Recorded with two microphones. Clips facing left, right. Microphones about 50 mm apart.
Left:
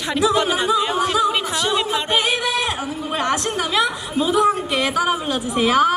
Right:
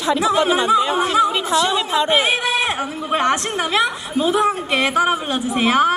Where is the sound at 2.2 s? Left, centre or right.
Right.